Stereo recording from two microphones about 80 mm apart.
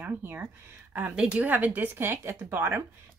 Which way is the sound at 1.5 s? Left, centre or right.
Right.